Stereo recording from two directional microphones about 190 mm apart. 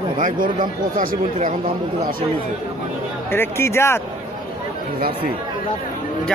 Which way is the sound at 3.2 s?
10° left (ahead or behind).